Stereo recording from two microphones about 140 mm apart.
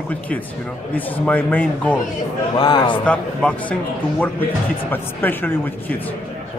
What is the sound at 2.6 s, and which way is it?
Speech, 35° left (ahead or behind).